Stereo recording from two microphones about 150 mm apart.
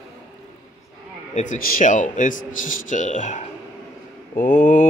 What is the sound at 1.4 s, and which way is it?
A man's voice, 65° left (ahead or behind).